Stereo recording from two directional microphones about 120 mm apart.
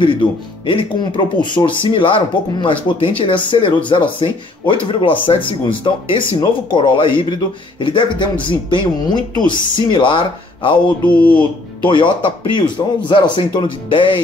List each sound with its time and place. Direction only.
0.0 s speech: 45° left (ahead or behind)